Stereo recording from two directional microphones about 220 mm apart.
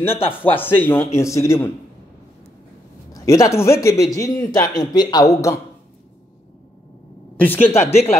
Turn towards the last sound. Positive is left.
turn(degrees=10)  # may be behind; listen again after turning